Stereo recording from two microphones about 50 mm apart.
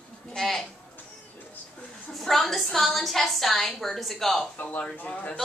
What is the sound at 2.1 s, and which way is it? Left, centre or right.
A woman's voice, centre.